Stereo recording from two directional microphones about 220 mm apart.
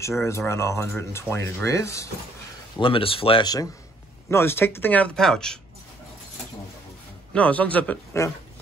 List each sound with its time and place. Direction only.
0.2 s speech: 10° left (ahead or behind)
2.8 s speech: 25° left (ahead or behind); by 5.6 s 5° left (ahead or behind)
7.3 s speech: 5° left (ahead or behind)